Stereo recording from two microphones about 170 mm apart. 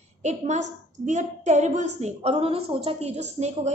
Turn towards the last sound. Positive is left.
turn(degrees=-40)  # may be behind; listen again after turning